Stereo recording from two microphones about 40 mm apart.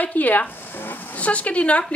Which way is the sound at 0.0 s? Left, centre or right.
Left.